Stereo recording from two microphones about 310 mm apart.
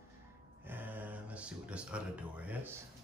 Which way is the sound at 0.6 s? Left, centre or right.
Centre.